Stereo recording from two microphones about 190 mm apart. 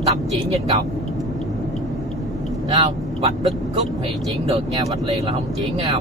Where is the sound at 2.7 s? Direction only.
25° right (ahead or behind).